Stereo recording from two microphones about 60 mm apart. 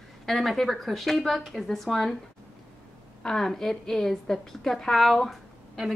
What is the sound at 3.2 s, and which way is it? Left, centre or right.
A woman's voice, centre.